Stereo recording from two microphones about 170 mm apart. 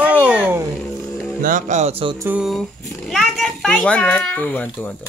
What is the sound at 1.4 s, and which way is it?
Speech, 50° right (ahead or behind).